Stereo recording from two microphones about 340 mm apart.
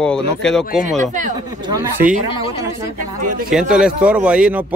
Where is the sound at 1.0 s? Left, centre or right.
Right.